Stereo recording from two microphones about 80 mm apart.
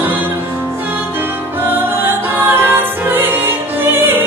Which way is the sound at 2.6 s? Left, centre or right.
Right.